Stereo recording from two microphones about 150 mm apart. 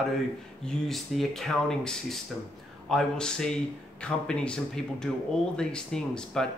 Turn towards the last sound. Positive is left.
turn(degrees=5)  # may be behind; listen again after turning